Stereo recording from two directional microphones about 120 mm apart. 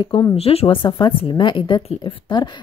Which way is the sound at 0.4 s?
55° left (ahead or behind).